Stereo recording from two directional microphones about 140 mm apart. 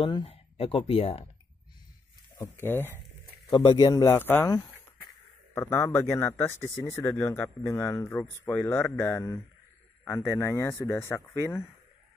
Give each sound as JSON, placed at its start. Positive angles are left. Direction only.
{"t": 0.0, "sound": "speech", "side_deg": 35}
{"t": 2.3, "sound": "speech", "side_deg": 20}
{"t": 3.4, "sound": "speech", "side_deg": 30}
{"t": 5.5, "sound": "speech", "side_deg": 20}